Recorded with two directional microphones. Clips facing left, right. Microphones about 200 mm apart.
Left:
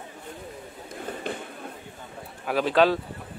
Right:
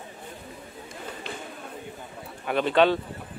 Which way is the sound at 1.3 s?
50° left (ahead or behind).